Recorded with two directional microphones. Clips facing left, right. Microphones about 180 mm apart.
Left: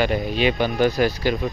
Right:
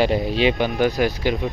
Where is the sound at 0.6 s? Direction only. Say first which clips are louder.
Even; 15° right (ahead or behind).